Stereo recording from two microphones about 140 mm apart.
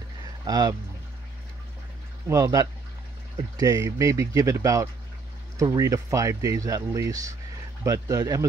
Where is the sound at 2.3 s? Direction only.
25° right (ahead or behind).